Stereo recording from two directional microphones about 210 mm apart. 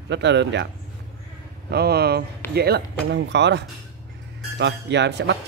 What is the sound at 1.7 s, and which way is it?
Speech, 50° right (ahead or behind).